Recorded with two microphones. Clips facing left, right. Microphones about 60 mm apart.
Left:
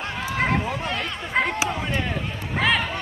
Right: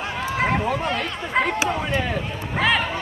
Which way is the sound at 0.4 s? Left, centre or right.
Centre.